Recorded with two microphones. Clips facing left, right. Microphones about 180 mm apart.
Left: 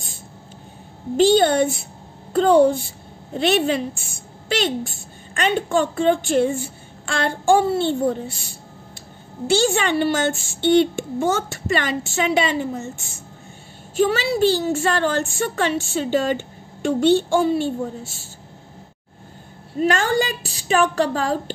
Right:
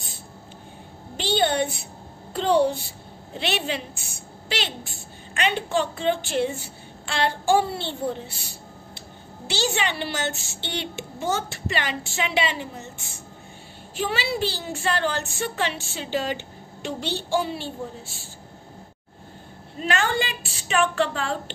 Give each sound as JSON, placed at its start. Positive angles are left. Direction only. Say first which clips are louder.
{"t": 1.1, "sound": "a woman's voice", "louder": "left 8 dB", "side_deg": 45}
{"t": 19.8, "sound": "a woman's voice", "louder": "left 6 dB", "side_deg": 45}